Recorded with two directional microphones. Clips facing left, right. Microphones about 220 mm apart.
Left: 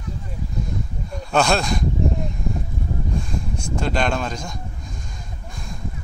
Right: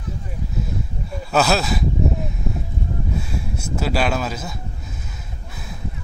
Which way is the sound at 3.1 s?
5° right (ahead or behind).